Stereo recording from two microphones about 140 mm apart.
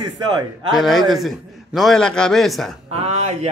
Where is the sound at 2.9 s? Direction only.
50° right (ahead or behind).